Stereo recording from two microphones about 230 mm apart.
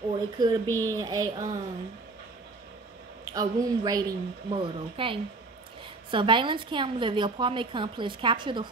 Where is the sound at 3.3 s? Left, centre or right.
Centre.